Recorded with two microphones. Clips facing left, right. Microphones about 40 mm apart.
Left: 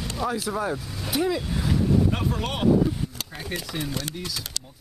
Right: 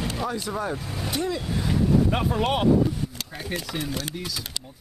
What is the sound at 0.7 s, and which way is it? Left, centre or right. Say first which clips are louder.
Speech: right 1 dB; centre.